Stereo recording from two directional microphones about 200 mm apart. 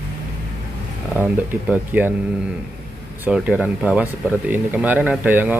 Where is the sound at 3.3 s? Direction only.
5° right (ahead or behind).